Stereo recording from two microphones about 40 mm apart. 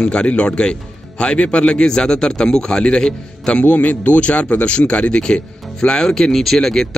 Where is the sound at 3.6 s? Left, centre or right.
Left; by 6.9 s centre.